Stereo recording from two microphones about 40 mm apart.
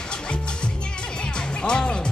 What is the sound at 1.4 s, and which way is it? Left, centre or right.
Music, left.